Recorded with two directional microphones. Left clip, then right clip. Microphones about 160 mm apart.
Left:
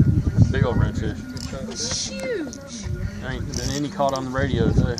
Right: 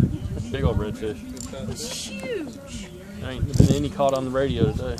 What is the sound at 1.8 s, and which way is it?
Speech, 25° right (ahead or behind).